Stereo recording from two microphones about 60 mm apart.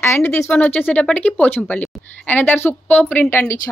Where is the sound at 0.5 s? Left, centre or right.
Left.